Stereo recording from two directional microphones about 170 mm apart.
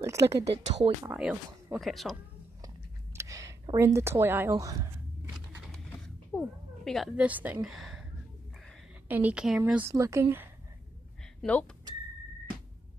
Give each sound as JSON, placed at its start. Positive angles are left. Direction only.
{"t": 0.0, "sound": "a woman's voice", "side_deg": -15}
{"t": 0.4, "sound": "speech", "side_deg": -85}
{"t": 1.0, "sound": "speech", "side_deg": -10}
{"t": 2.6, "sound": "a sound", "side_deg": -20}
{"t": 3.7, "sound": "a woman's voice", "side_deg": -15}
{"t": 6.3, "sound": "speech", "side_deg": 5}
{"t": 9.1, "sound": "a woman's voice", "side_deg": -10}